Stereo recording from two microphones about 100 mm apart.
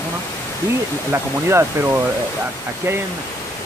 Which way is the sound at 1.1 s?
25° right (ahead or behind).